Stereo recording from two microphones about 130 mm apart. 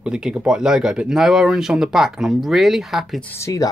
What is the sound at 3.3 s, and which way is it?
Speech, 25° left (ahead or behind).